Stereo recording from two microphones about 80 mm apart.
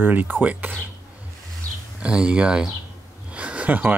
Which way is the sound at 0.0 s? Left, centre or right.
Right.